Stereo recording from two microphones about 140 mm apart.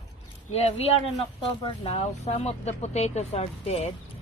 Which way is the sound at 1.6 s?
45° left (ahead or behind).